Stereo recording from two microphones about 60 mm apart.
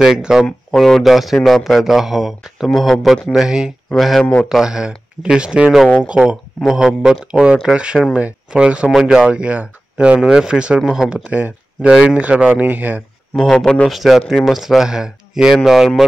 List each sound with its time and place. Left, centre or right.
0.0 s speech: centre
0.5 s a man's voice: centre
3.9 s a man's voice: centre
4.2 s speech: centre
4.5 s speech: centre
11.2 s speech: right
13.4 s speech: centre
13.8 s a man's voice: centre